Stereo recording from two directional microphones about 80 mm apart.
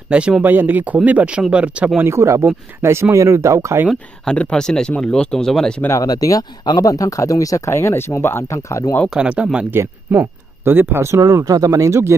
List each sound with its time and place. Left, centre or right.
0.1 s speech: centre
0.5 s speech: right
2.0 s speech: right
4.3 s speech: centre
6.0 s speech: left
9.1 s speech: centre
9.7 s speech: right
11.1 s speech: right